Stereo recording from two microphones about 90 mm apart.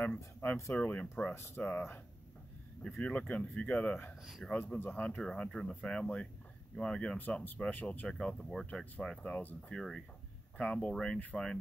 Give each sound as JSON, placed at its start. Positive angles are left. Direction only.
{"t": 0.0, "sound": "speech", "side_deg": 20}
{"t": 9.8, "sound": "speech", "side_deg": 5}